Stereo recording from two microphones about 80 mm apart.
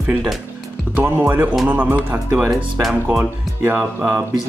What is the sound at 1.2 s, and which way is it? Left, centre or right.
Speech, centre.